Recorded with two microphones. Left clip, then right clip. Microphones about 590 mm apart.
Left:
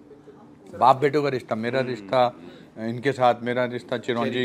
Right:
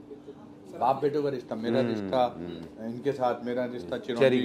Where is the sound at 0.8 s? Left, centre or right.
Left.